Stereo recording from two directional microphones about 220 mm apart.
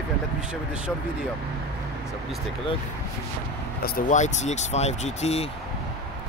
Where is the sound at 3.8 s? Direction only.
40° left (ahead or behind).